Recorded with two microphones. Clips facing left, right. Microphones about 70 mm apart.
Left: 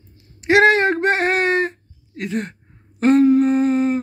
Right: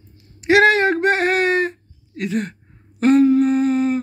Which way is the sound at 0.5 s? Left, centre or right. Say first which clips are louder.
Even; left.